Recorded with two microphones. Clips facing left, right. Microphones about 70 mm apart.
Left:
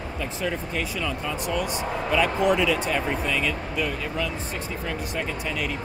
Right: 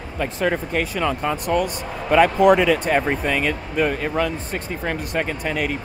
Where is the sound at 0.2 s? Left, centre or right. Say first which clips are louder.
Right 8 dB; right.